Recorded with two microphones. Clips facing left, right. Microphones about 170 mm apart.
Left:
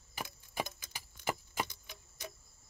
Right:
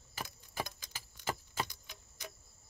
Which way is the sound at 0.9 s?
15° left (ahead or behind).